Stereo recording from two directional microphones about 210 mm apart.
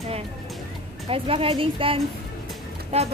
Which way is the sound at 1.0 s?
25° right (ahead or behind).